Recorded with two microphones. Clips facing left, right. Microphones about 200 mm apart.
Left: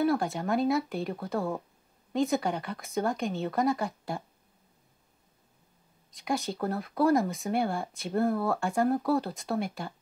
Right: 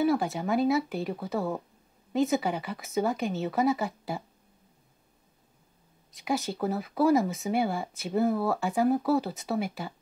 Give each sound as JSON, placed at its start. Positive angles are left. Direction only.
{"t": 0.0, "sound": "speech", "side_deg": 0}
{"t": 6.1, "sound": "speech", "side_deg": 0}